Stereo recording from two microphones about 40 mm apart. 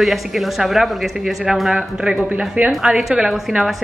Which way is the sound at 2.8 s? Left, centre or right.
Centre.